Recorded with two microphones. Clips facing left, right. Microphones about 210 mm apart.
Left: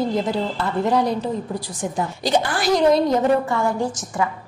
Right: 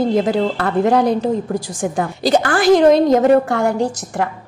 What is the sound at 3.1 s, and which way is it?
Speech, 75° right (ahead or behind).